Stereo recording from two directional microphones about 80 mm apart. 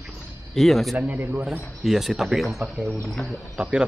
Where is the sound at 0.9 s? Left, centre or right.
Right.